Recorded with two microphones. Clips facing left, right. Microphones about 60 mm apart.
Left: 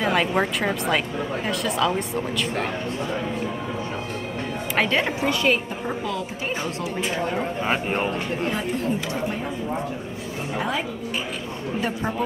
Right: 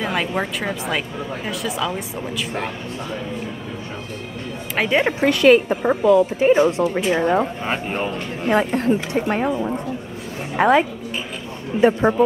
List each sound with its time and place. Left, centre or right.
0.0 s speech: centre
5.2 s a woman's voice: right
5.7 s speech: right
6.0 s speech: right
6.8 s speech: right
7.6 s speech: centre
8.5 s speech: right
10.6 s speech: right
11.8 s speech: right